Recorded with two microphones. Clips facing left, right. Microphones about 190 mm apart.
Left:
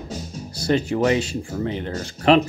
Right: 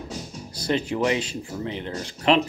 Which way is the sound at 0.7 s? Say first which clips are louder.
Left 4 dB; 45° left (ahead or behind).